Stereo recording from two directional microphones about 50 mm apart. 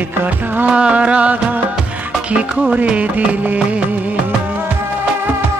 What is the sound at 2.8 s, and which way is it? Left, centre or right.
Music, right.